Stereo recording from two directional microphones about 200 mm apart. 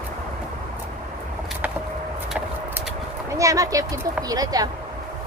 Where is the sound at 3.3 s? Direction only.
15° right (ahead or behind).